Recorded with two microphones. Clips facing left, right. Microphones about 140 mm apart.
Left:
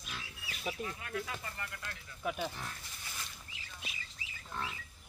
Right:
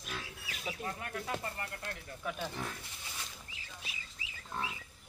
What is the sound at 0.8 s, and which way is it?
Speech, 45° right (ahead or behind).